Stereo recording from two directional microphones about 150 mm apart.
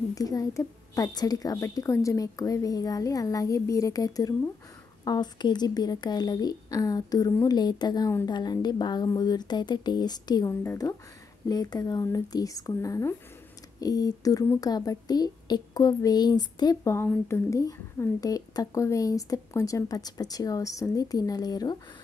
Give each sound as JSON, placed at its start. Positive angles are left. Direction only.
{"t": 0.1, "sound": "speech", "side_deg": 25}
{"t": 10.5, "sound": "speech", "side_deg": 15}